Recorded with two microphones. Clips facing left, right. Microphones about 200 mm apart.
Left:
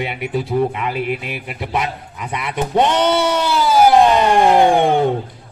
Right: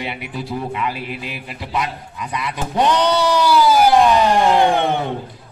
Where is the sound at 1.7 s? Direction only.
25° left (ahead or behind).